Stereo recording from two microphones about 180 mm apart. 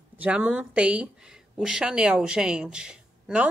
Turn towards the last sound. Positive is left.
turn(degrees=-5)  # may be behind; listen again after turning